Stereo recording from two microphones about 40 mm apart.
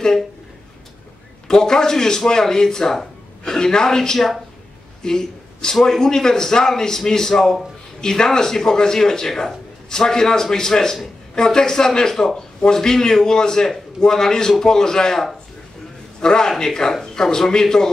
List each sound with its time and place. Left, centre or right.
1.5 s a man's voice: centre